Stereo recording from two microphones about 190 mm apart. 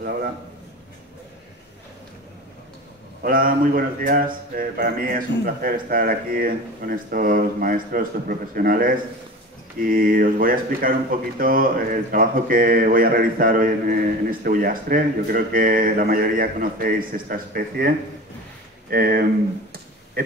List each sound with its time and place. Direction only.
3.2 s speech: 50° right (ahead or behind)